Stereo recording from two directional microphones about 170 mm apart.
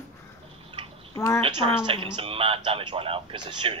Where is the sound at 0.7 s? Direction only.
30° right (ahead or behind).